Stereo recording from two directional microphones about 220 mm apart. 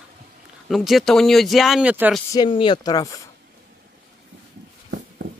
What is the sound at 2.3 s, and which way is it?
Speech, 20° left (ahead or behind).